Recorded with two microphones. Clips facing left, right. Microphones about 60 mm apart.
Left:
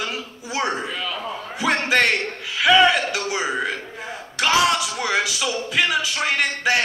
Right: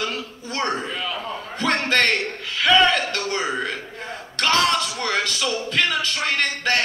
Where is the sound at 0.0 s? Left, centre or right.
Centre.